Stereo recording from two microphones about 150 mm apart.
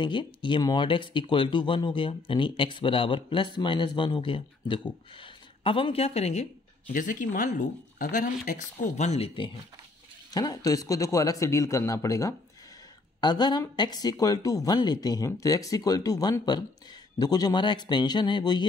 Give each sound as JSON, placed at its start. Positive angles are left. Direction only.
{"t": 0.0, "sound": "speech", "side_deg": 35}
{"t": 6.9, "sound": "speech", "side_deg": 60}
{"t": 10.3, "sound": "speech", "side_deg": 25}